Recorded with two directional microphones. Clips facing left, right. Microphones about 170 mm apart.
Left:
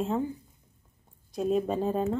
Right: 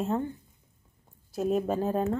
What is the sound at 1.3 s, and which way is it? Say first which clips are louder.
Speech: even; 5° right (ahead or behind).